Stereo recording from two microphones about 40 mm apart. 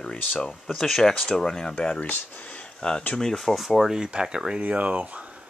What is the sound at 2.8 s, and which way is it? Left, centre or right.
Speech, left.